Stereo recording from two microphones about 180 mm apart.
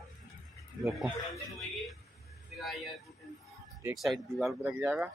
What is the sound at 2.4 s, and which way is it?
Vehicle, centre (ahead or behind).